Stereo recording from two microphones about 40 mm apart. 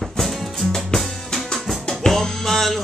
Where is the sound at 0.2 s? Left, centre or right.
Centre.